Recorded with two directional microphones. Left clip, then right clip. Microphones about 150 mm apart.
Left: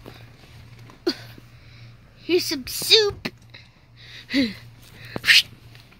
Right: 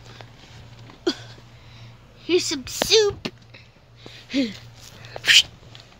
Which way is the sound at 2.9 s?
5° right (ahead or behind).